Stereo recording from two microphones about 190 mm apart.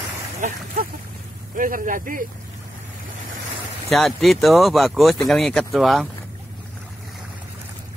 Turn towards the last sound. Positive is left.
turn(degrees=0)  # may be behind; listen again after turning